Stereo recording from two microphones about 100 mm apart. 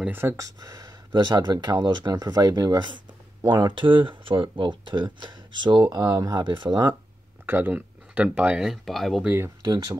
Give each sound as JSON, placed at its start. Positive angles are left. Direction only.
{"t": 0.1, "sound": "speech", "side_deg": -25}
{"t": 0.6, "sound": "speech", "side_deg": -40}
{"t": 7.4, "sound": "speech", "side_deg": -20}
{"t": 9.2, "sound": "speech", "side_deg": -20}